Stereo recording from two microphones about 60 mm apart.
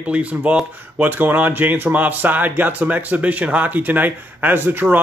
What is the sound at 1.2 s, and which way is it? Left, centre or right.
Speech, right.